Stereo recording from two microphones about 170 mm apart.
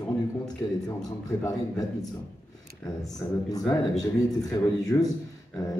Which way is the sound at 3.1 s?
20° left (ahead or behind).